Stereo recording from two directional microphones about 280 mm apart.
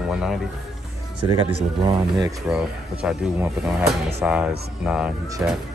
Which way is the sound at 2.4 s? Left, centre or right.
Centre.